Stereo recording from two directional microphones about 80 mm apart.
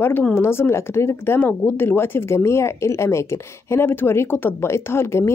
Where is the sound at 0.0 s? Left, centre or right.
Left.